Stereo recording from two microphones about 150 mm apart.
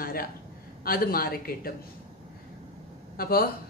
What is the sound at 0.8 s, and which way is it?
Speech, 80° left.